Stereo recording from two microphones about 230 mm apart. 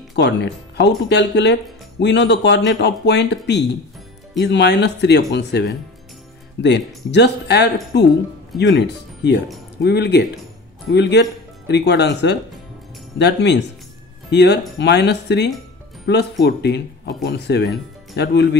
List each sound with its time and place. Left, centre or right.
0.1 s speech: left